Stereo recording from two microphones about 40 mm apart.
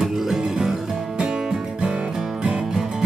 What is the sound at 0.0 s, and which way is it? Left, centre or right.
Music, centre.